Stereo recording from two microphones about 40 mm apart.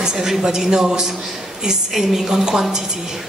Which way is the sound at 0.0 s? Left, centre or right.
Centre.